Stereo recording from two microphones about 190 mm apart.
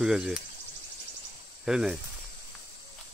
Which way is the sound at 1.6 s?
Centre (ahead or behind).